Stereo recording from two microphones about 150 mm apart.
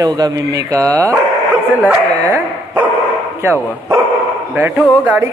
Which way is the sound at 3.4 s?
15° right (ahead or behind).